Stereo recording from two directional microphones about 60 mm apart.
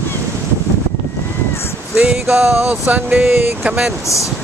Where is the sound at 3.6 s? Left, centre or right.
Centre.